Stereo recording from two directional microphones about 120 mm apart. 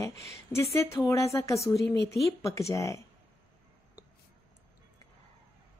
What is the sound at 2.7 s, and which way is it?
Speech, 25° left (ahead or behind).